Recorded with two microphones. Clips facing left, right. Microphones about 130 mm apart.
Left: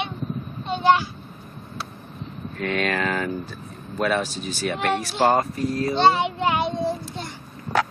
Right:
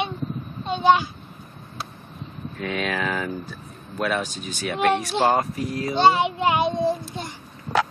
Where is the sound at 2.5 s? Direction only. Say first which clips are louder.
Left 2 dB; 5° right (ahead or behind).